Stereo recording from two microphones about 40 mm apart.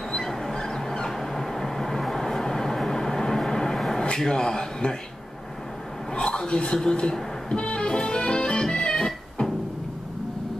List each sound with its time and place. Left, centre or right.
0.1 s a sound: centre
4.2 s speech: centre
6.1 s music: centre